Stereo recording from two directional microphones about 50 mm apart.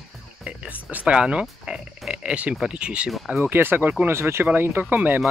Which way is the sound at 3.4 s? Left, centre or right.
Right.